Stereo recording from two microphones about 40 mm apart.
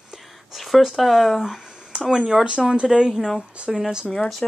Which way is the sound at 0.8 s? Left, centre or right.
Centre.